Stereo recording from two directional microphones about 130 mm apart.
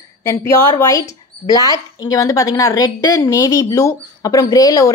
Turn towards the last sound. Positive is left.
turn(degrees=25)  # may be behind; listen again after turning